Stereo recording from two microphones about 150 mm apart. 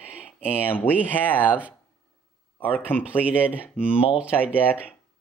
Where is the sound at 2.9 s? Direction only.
10° left (ahead or behind).